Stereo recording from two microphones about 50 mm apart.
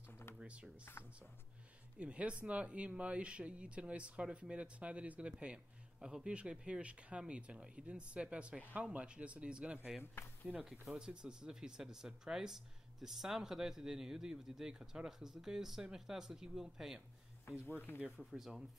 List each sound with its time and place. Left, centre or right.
0.1 s a sound: left
0.9 s speech: left
2.0 s speech: right
5.9 s speech: centre
10.2 s speech: left
10.6 s speech: centre
17.5 s speech: left
18.1 s speech: centre